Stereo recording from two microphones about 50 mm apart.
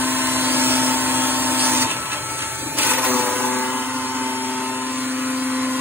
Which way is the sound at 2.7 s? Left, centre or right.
Right.